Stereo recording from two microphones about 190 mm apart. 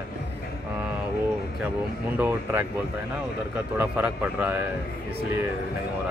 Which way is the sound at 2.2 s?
10° right (ahead or behind).